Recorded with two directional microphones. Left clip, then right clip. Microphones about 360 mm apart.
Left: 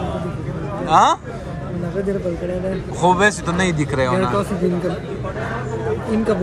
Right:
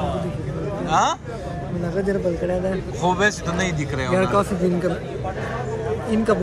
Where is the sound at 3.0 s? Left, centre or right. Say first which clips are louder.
Left 5 dB; centre.